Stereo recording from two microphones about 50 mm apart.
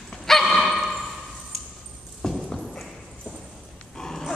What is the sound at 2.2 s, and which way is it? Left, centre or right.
Clip-clop, centre.